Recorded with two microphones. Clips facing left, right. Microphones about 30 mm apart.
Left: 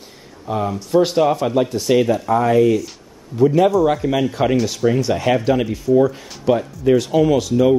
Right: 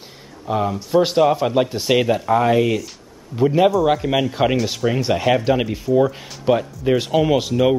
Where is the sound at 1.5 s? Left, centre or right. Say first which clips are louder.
Left 1 dB; right.